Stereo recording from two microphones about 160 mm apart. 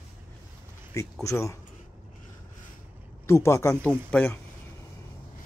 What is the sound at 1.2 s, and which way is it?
Speech, 20° left (ahead or behind).